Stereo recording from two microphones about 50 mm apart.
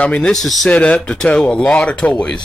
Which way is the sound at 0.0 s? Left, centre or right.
Left.